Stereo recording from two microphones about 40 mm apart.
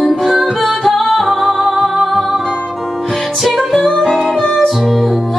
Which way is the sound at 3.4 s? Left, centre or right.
Centre.